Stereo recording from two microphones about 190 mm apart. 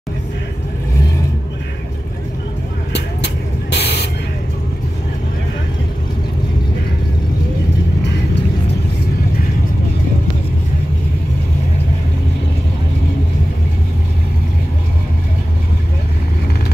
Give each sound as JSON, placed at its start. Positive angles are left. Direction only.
{"t": 3.7, "sound": "spray", "side_deg": 60}